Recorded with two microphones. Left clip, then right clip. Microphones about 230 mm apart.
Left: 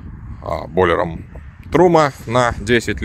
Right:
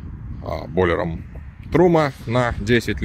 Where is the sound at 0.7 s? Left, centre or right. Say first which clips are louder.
Left 4 dB; left.